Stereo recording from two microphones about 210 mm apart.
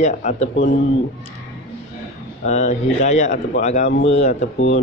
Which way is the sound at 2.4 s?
35° left (ahead or behind).